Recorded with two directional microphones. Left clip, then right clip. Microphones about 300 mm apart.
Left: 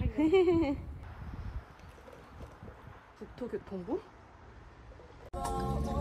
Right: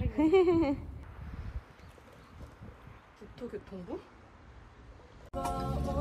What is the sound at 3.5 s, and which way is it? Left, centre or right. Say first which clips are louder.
Speech: left 5 dB; left.